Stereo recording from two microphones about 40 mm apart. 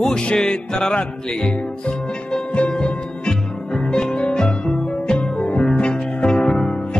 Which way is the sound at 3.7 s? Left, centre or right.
Left.